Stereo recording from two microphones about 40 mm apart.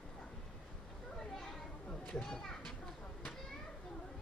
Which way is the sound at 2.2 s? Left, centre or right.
Centre.